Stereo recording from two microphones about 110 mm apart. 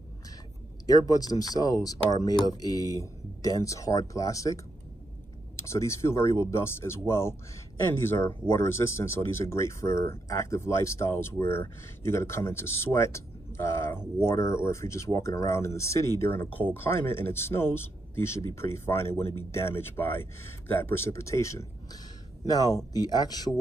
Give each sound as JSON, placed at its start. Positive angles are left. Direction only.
{"t": 0.8, "sound": "speech", "side_deg": 35}
{"t": 5.6, "sound": "speech", "side_deg": 25}